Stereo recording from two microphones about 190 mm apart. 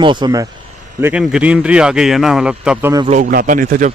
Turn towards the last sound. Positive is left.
turn(degrees=-45)  # may be behind; listen again after turning